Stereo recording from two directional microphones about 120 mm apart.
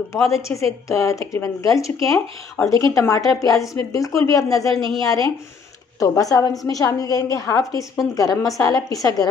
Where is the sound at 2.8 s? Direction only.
25° left (ahead or behind).